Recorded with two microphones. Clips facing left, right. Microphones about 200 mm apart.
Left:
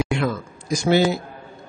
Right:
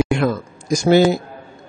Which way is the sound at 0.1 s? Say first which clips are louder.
Right 5 dB; 45° right (ahead or behind).